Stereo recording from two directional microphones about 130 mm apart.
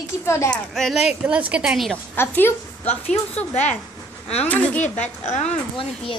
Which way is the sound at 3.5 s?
60° left (ahead or behind).